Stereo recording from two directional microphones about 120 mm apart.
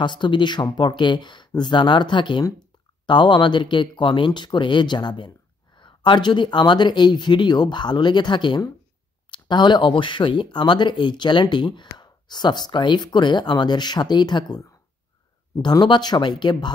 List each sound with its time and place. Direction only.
0.0 s speech: 40° left (ahead or behind)